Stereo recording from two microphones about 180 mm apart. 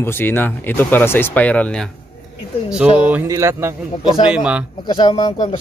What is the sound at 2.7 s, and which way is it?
Speech, 5° right (ahead or behind).